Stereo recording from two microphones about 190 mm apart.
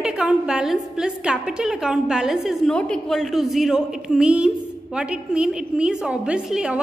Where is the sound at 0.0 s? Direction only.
5° right (ahead or behind).